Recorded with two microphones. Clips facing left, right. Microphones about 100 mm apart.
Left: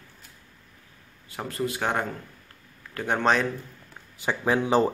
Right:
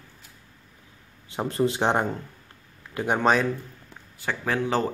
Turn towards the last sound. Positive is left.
turn(degrees=15)  # may be behind; listen again after turning